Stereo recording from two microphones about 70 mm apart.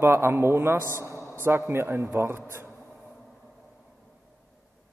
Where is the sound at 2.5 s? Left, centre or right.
Right.